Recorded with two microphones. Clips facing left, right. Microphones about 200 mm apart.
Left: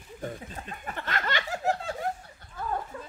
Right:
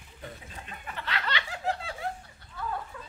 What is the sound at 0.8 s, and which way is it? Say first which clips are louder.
Laughter: left 2 dB; 45° left (ahead or behind).